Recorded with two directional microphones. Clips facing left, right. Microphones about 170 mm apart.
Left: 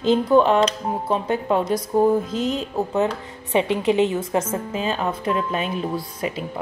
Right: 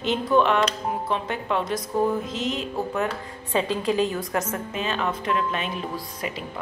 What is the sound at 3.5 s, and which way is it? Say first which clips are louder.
A woman's voice: left 4 dB; 20° left (ahead or behind).